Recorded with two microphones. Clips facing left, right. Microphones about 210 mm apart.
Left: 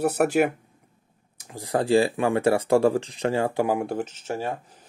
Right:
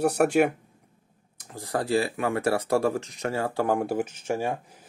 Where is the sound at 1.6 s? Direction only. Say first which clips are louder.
Left 5 dB; 25° left (ahead or behind).